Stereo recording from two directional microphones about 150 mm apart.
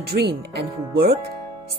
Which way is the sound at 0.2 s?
90° right.